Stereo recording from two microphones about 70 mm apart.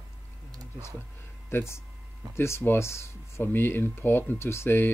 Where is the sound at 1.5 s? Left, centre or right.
Left.